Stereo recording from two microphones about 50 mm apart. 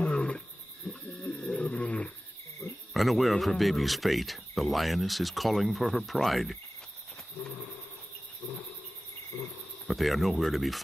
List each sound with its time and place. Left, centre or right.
0.0 s wild animals: left
2.9 s speech: centre
9.8 s speech: centre